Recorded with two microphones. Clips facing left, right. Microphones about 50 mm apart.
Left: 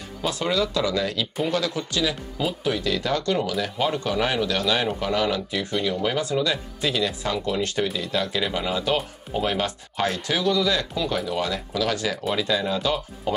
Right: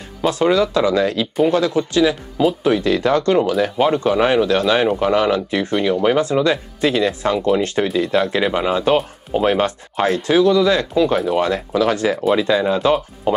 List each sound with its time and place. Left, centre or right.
0.2 s speech: right
8.4 s speech: right